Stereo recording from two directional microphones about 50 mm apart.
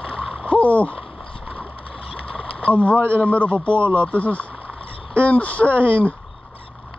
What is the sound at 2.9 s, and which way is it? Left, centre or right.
Speech, right.